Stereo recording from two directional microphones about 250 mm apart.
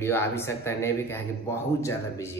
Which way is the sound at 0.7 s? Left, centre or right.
Centre.